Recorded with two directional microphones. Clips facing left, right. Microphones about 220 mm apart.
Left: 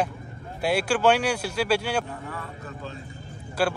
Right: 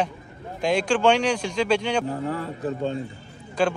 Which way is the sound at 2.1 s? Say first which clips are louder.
Right 9 dB; 30° right (ahead or behind).